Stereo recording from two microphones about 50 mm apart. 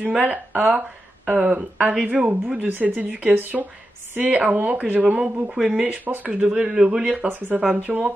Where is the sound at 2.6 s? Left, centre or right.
Right.